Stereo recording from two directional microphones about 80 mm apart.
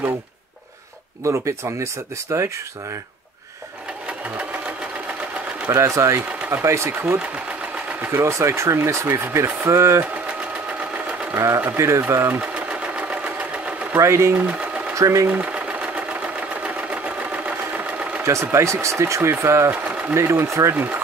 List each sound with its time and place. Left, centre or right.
1.2 s speech: right
5.7 s speech: right
11.3 s speech: right
12.4 s engine: centre
13.9 s speech: right
15.4 s sewing machine: centre
18.2 s speech: right
20.7 s speech: right